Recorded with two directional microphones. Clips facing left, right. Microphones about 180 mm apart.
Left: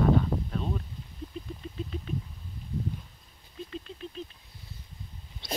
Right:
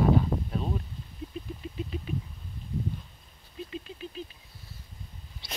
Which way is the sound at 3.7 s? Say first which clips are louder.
Even; 5° right (ahead or behind).